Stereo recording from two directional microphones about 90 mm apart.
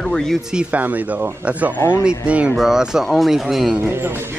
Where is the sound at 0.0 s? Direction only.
5° left (ahead or behind).